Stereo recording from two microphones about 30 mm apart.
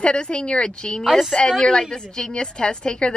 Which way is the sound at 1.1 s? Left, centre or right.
Centre.